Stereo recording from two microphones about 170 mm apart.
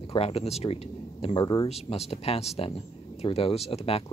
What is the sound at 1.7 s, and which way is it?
Speech, 40° left (ahead or behind).